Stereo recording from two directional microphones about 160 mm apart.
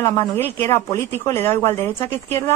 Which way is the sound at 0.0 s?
15° left (ahead or behind).